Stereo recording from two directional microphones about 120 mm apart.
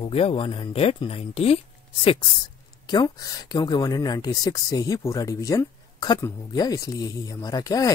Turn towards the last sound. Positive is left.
turn(degrees=30)  # may be behind; listen again after turning